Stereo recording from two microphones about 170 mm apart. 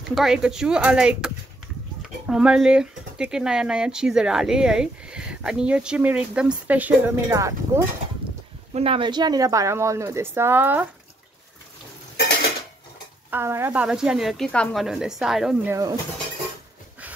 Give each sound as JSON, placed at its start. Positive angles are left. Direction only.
{"t": 0.1, "sound": "speech", "side_deg": -5}
{"t": 8.7, "sound": "speech", "side_deg": -35}
{"t": 13.3, "sound": "speech", "side_deg": -15}
{"t": 15.7, "sound": "speech", "side_deg": -20}